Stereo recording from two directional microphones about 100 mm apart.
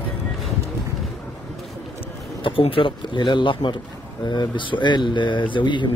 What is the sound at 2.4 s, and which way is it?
A man's voice, 65° left (ahead or behind).